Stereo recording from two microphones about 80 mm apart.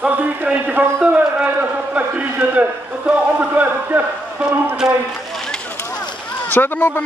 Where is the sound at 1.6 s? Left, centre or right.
Right.